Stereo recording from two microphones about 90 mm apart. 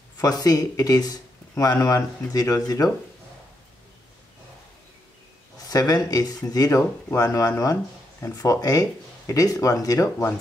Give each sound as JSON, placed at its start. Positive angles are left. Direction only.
{"t": 0.2, "sound": "speech", "side_deg": 45}
{"t": 5.7, "sound": "speech", "side_deg": 45}